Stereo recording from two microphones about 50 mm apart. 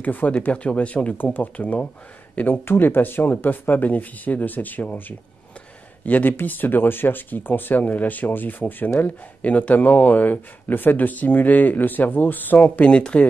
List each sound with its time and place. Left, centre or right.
0.0 s speech: left
0.5 s speech: left
2.4 s speech: left
9.4 s speech: left
12.9 s speech: left